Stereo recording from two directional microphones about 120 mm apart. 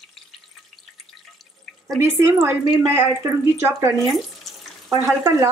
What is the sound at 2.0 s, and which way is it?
Speech, 20° right (ahead or behind).